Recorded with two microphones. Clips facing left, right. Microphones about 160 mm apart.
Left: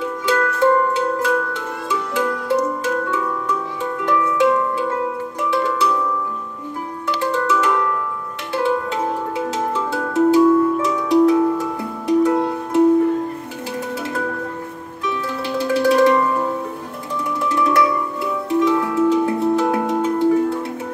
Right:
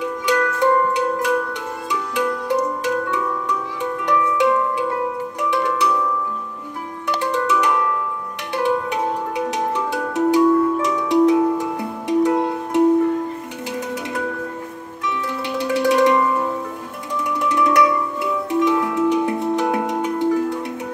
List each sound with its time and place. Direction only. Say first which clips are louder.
0.0 s music: even; 20° right (ahead or behind)
7.2 s music: left 1 dB; 20° right (ahead or behind)
15.0 s music: left 1 dB; 20° right (ahead or behind)
17.4 s music: right 1 dB; 20° right (ahead or behind)